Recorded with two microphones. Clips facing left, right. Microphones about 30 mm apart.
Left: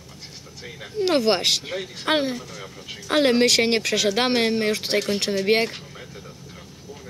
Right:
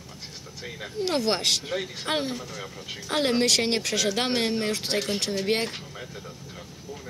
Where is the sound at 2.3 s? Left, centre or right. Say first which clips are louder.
Left 2 dB; centre.